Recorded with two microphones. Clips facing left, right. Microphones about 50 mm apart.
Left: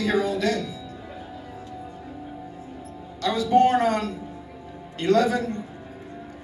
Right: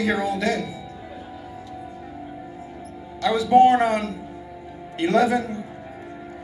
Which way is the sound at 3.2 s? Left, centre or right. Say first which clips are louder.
Right 4 dB; centre.